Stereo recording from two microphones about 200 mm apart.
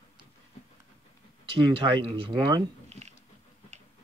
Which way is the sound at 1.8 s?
25° right (ahead or behind).